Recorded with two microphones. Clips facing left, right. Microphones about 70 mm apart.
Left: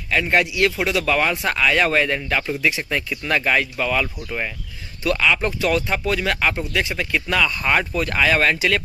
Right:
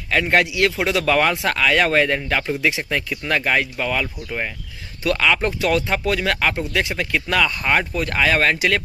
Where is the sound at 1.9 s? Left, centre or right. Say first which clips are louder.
Right 2 dB; right.